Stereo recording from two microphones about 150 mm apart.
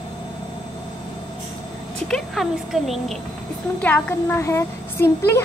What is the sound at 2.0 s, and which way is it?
A woman's voice, centre (ahead or behind).